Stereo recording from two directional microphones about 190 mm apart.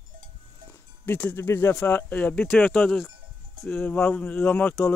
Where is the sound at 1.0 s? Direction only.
10° left (ahead or behind).